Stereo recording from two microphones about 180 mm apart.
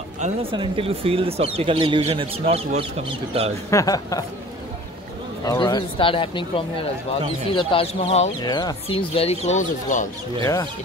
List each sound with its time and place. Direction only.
0.2 s speech: 30° right (ahead or behind)
3.7 s speech: 20° left (ahead or behind)
5.4 s speech: 20° left (ahead or behind)
8.4 s speech: 25° left (ahead or behind); by 10.0 s 45° left (ahead or behind)
10.4 s speech: 20° left (ahead or behind)